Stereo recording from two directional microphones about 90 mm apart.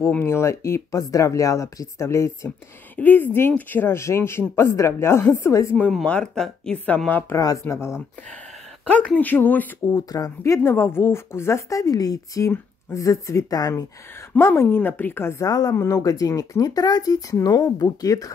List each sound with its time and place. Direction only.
0.2 s speech: 30° left (ahead or behind)
3.0 s speech: 20° left (ahead or behind)
6.0 s speech: 10° left (ahead or behind)
7.3 s speech: 40° left (ahead or behind)
9.2 s speech: 20° left (ahead or behind)
9.8 s speech: 45° left (ahead or behind)
14.4 s speech: 25° left (ahead or behind)
15.7 s speech: 30° left (ahead or behind)